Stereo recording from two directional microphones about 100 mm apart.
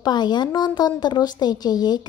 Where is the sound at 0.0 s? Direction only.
45° left (ahead or behind).